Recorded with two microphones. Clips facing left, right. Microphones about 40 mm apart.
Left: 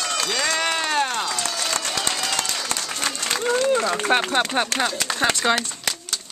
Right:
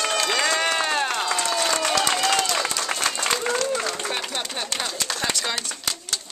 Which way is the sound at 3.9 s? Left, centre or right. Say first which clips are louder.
Left 8 dB; left.